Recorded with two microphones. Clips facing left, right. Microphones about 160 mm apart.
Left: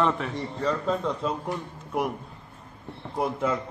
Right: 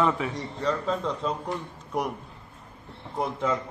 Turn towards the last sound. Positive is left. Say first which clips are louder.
# left 1 dB
turn(degrees=5)  # may be behind; listen again after turning